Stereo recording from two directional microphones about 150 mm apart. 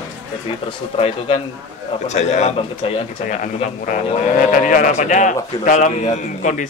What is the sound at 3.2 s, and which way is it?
A man's voice, 60° left (ahead or behind).